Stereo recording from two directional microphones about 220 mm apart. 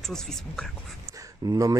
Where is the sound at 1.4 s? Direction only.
15° right (ahead or behind).